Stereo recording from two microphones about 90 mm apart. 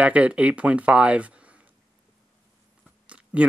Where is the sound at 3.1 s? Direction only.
15° right (ahead or behind).